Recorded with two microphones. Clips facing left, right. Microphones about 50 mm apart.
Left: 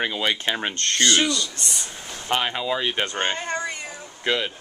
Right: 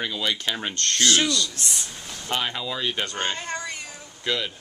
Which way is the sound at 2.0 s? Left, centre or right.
Left.